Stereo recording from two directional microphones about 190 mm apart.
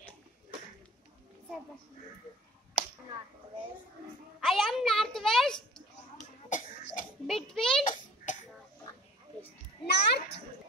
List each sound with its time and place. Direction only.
4.4 s a child's voice: centre (ahead or behind)
6.5 s cough: 40° left (ahead or behind)
7.2 s a child's voice: centre (ahead or behind)
7.8 s a sound: 45° left (ahead or behind)
9.8 s a child's voice: 60° left (ahead or behind)